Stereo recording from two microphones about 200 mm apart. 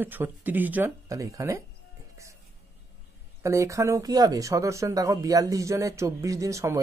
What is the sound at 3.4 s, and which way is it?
Speech, 15° right (ahead or behind).